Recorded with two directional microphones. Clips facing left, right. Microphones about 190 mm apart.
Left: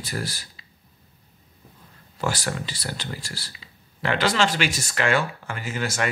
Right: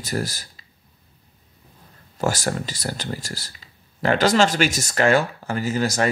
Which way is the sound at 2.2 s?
45° right (ahead or behind).